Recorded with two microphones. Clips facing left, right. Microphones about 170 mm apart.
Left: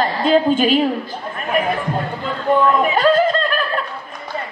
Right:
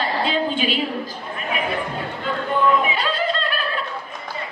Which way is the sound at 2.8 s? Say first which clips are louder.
Left 9 dB; 45° left (ahead or behind).